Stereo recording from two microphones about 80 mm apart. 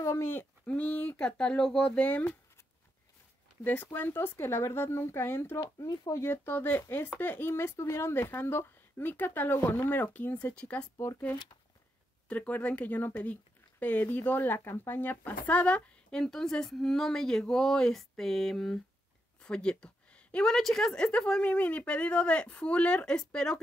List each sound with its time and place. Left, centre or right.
0.0 s speech: left
0.7 s speech: centre
3.6 s speech: left
5.8 s speech: left
6.2 s speech: left; by 10.9 s centre
12.3 s speech: centre